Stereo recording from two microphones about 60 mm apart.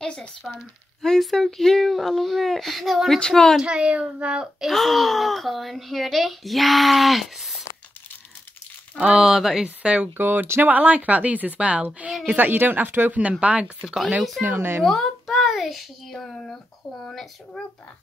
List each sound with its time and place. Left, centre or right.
0.0 s a sound: centre
1.0 s a woman's voice: centre
3.5 s a child's voice: centre
4.6 s speech: centre
9.0 s a child's voice: centre
10.1 s speech: right
13.2 s speech: right
14.4 s speech: right
14.8 s a child's voice: centre